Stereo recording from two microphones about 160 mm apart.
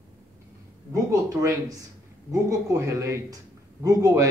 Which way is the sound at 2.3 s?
20° right (ahead or behind).